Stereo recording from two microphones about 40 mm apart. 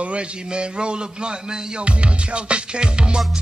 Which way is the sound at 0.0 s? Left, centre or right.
Right.